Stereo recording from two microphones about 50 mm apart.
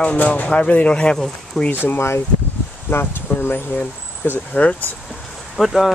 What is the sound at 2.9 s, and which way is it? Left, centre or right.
Speech, left.